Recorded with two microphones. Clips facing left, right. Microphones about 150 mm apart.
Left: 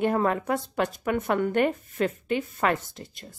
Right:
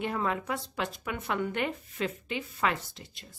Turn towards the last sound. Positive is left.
turn(degrees=50)  # may be behind; listen again after turning